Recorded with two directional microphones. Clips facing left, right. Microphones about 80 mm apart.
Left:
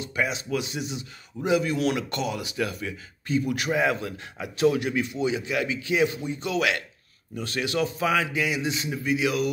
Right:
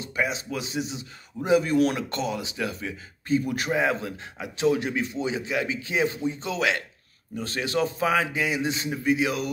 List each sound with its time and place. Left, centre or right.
0.0 s a man's voice: right
3.3 s a man's voice: right